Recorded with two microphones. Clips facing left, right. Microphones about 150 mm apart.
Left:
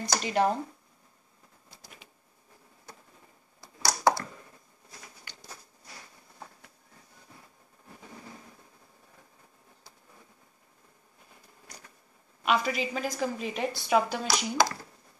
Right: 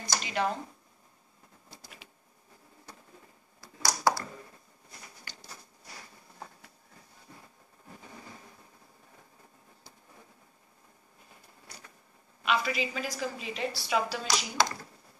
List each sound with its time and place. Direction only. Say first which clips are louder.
0.1 s speech: left 5 dB; 45° left (ahead or behind)
3.6 s a sound: left 2 dB; 25° left (ahead or behind)
12.4 s a woman's voice: left 2 dB; 45° left (ahead or behind)
14.2 s speech: left 3 dB; 10° left (ahead or behind)